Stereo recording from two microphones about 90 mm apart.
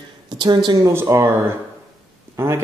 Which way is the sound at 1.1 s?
35° right (ahead or behind).